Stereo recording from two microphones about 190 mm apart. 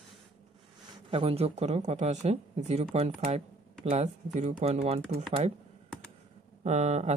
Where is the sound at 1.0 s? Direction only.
30° right (ahead or behind).